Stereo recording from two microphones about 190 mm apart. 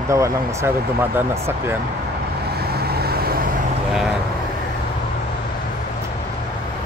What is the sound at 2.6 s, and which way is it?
Vehicle, 55° right (ahead or behind).